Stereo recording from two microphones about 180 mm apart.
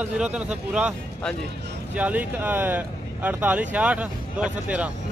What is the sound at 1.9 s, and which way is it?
Speech, 10° right (ahead or behind).